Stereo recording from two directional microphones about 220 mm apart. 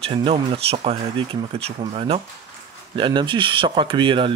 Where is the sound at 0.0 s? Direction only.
25° right (ahead or behind).